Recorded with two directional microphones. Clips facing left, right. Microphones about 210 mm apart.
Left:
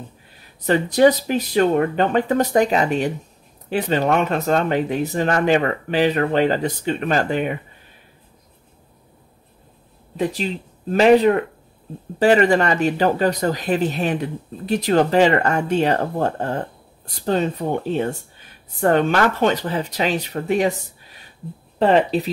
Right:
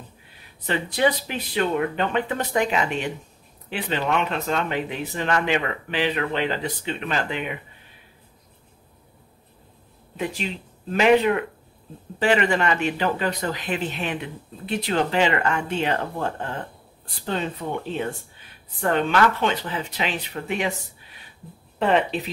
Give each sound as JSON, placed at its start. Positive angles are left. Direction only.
{"t": 0.7, "sound": "speech", "side_deg": 40}
{"t": 10.1, "sound": "speech", "side_deg": 35}
{"t": 21.7, "sound": "speech", "side_deg": 35}